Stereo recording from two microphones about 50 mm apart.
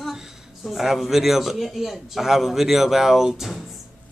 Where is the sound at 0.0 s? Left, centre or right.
Centre.